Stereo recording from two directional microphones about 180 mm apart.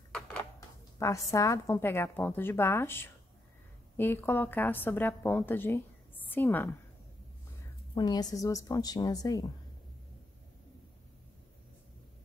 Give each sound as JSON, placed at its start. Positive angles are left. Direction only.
{"t": 0.6, "sound": "a woman's voice", "side_deg": 15}
{"t": 7.9, "sound": "a woman's voice", "side_deg": 20}